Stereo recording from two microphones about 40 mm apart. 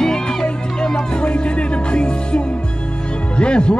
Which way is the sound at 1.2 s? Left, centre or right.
Left.